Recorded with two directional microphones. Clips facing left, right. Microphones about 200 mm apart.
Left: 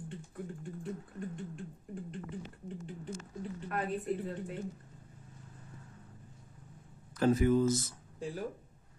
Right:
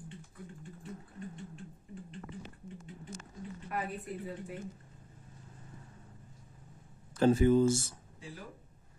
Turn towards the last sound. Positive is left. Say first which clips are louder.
# right 2 dB
turn(degrees=-30)  # may be behind; listen again after turning